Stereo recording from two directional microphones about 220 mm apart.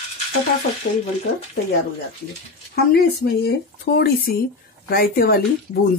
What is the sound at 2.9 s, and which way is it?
Speech, 45° left (ahead or behind).